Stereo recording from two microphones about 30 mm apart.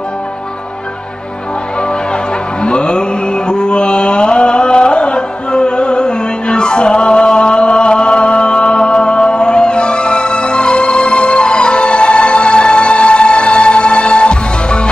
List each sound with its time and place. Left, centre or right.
2.6 s mantra: left